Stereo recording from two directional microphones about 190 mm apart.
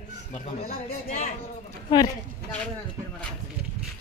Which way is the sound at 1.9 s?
20° left (ahead or behind).